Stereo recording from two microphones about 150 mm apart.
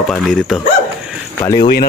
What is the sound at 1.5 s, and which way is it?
Speech, 80° left.